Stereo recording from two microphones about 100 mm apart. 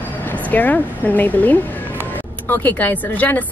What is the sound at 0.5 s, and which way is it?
Speech, 15° left (ahead or behind).